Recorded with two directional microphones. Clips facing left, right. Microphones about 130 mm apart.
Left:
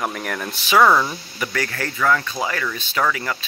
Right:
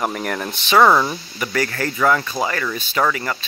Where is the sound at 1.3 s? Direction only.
5° right (ahead or behind).